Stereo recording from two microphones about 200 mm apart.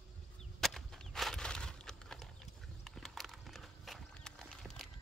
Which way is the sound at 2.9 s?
Centre (ahead or behind).